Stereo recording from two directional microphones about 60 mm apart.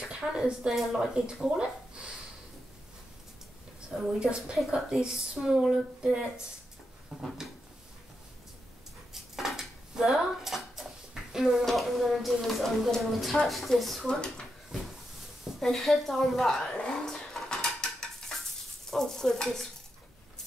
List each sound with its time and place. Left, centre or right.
0.1 s speech: centre
4.2 s speech: centre
7.1 s drawer open or close: centre
9.1 s dishes: centre
11.3 s speech: centre
14.0 s stir: centre
15.6 s speech: centre
16.7 s dishes: centre
18.9 s stir: centre